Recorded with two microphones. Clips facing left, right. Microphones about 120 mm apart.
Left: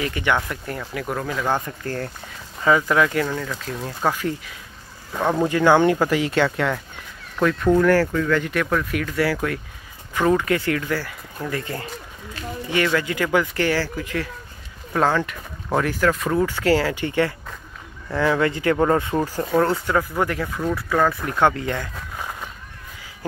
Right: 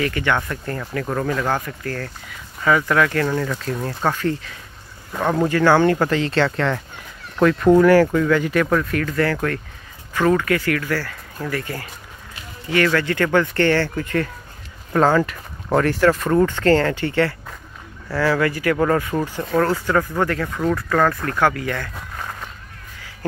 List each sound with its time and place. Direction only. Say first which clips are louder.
0.0 s speech: right 1 dB; 20° left (ahead or behind)
1.5 s speech: even; 25° left (ahead or behind)
3.3 s speech: right 5 dB; centre (ahead or behind)
5.1 s speech: right 1 dB; centre (ahead or behind)
5.5 s speech: right 1 dB; 15° left (ahead or behind)
7.3 s speech: right 4 dB; 5° right (ahead or behind); by 19.2 s 25° left (ahead or behind)
19.5 s speech: right 1 dB; 10° left (ahead or behind)
21.3 s speech: even; 20° left (ahead or behind)
22.1 s a sound: left 1 dB; 10° left (ahead or behind)